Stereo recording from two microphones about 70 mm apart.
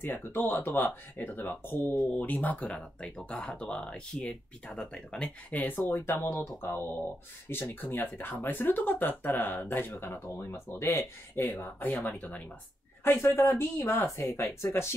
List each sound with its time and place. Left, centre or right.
0.0 s speech: left